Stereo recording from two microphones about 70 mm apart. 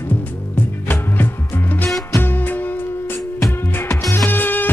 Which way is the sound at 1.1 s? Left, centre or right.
Left.